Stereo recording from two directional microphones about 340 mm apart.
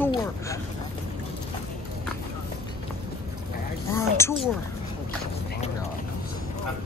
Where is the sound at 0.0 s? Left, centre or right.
Centre.